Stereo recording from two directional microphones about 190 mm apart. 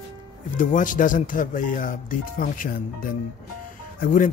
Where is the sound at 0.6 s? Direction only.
45° left (ahead or behind).